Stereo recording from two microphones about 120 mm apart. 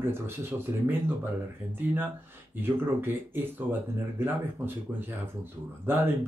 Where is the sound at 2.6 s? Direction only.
15° right (ahead or behind).